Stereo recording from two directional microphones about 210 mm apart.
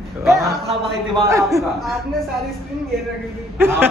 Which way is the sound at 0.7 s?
20° right (ahead or behind).